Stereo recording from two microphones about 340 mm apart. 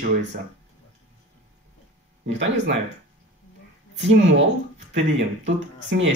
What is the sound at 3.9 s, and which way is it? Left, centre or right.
Speech, right.